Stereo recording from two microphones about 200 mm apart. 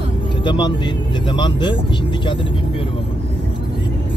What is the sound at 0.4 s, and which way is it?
Speech, 25° left (ahead or behind).